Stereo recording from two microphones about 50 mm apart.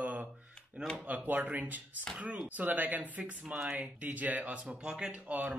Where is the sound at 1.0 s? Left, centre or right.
Right.